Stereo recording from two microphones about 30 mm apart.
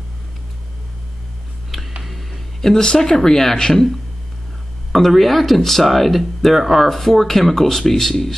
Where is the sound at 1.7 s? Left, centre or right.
Centre.